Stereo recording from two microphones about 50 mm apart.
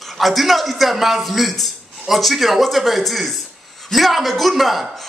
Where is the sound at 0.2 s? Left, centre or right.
Centre.